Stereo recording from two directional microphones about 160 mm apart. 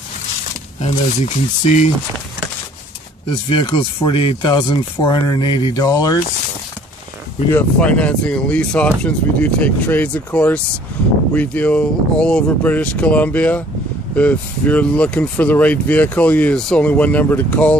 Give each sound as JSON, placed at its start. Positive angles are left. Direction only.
{"t": 0.7, "sound": "speech", "side_deg": 45}
{"t": 3.4, "sound": "speech", "side_deg": 35}
{"t": 7.5, "sound": "speech", "side_deg": 10}